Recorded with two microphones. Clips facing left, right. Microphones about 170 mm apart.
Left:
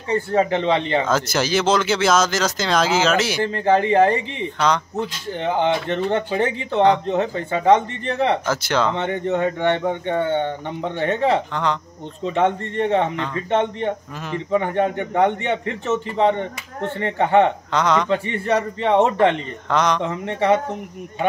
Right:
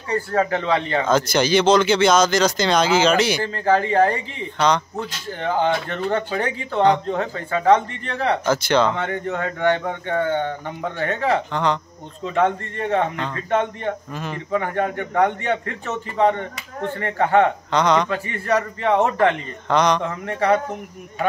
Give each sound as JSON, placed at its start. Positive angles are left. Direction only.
{"t": 0.1, "sound": "speech", "side_deg": 20}
{"t": 1.0, "sound": "speech", "side_deg": 5}
{"t": 3.4, "sound": "speech", "side_deg": 20}
{"t": 4.6, "sound": "speech", "side_deg": 5}
{"t": 4.9, "sound": "speech", "side_deg": 20}
{"t": 8.5, "sound": "speech", "side_deg": 5}
{"t": 8.9, "sound": "speech", "side_deg": 25}
{"t": 11.5, "sound": "speech", "side_deg": 0}
{"t": 12.3, "sound": "speech", "side_deg": 25}
{"t": 17.6, "sound": "speech", "side_deg": 0}
{"t": 18.0, "sound": "speech", "side_deg": 25}
{"t": 19.7, "sound": "speech", "side_deg": 0}
{"t": 20.0, "sound": "speech", "side_deg": 20}